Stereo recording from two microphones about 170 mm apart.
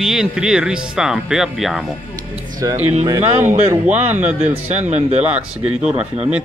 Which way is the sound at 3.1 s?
15° right (ahead or behind).